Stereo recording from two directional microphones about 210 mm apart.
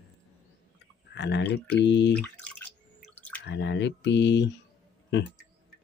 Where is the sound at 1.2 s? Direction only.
55° left (ahead or behind).